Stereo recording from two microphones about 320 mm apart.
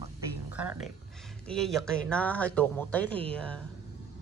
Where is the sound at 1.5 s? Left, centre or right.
Centre.